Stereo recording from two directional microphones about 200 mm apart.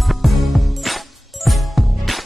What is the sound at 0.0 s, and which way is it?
Music, centre (ahead or behind).